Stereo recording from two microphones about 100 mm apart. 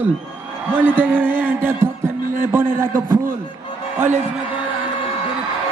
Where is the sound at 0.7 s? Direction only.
20° right (ahead or behind).